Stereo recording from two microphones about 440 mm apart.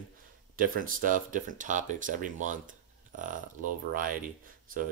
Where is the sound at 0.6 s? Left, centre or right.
Centre.